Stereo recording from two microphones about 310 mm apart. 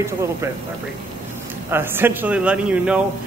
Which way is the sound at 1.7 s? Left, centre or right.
Centre.